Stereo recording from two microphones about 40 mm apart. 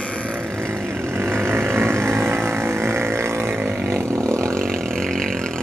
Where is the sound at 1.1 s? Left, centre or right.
Right.